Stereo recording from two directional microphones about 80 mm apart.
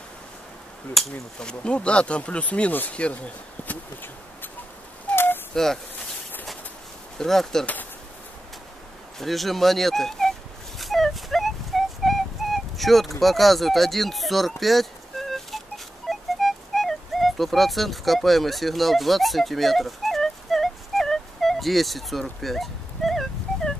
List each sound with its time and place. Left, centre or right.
1.0 s speech: centre; by 4.5 s left
5.1 s a sound: left
5.5 s speech: centre
7.2 s speech: centre
9.2 s speech: centre
10.8 s a sound: centre